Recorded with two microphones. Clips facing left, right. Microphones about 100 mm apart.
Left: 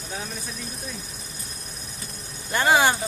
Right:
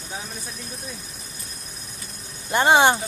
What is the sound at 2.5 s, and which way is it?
Speech, 25° right (ahead or behind).